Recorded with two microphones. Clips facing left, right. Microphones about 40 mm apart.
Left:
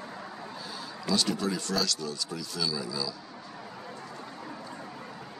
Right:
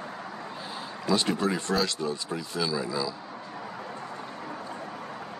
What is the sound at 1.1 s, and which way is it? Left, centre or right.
Speech, right.